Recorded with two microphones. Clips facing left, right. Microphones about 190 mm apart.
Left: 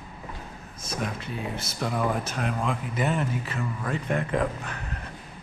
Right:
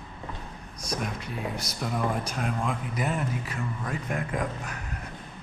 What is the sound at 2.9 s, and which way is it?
Speech, 25° left (ahead or behind).